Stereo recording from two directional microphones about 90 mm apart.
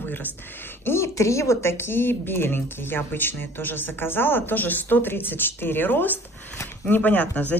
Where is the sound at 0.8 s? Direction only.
30° left (ahead or behind).